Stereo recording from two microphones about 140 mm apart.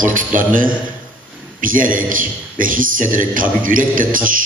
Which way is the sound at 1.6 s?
75° right (ahead or behind).